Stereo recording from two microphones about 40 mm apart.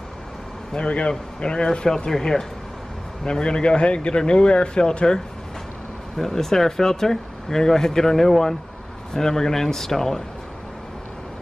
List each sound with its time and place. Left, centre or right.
0.7 s speech: left; by 10.2 s centre